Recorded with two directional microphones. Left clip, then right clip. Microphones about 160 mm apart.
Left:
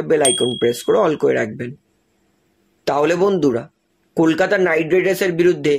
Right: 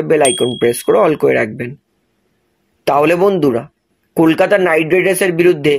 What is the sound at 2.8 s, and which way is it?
Speech, 20° right (ahead or behind).